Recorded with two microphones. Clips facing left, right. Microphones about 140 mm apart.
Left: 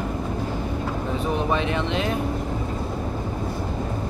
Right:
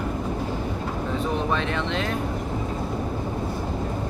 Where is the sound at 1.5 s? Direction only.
10° left (ahead or behind).